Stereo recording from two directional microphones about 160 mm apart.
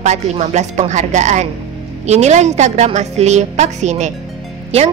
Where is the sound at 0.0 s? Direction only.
45° right (ahead or behind).